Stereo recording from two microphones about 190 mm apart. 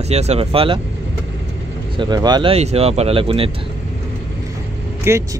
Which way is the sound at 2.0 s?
20° right (ahead or behind).